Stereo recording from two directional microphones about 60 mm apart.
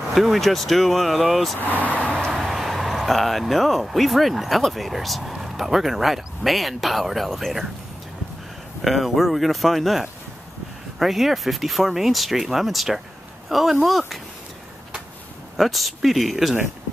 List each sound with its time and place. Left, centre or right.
0.1 s speech: centre
1.8 s vehicle: left
2.3 s speech: centre
8.8 s speech: centre
15.5 s speech: centre